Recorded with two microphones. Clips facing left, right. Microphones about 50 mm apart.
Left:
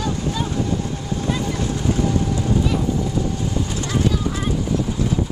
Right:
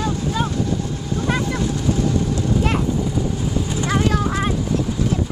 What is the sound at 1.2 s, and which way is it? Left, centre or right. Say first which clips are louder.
Boat: right 2 dB; right.